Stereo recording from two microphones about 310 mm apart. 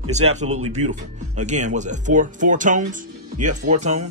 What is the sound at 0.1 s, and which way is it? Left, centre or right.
A man's voice, right.